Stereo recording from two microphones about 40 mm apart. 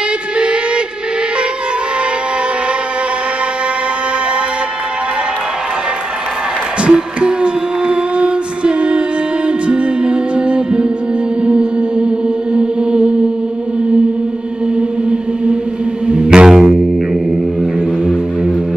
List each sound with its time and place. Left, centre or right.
6.8 s music: right
14.8 s music: right